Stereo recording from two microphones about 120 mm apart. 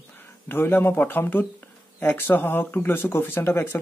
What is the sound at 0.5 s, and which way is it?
Speech, 15° left (ahead or behind).